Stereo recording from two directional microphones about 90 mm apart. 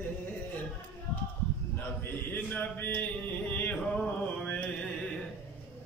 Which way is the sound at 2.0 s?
20° left (ahead or behind).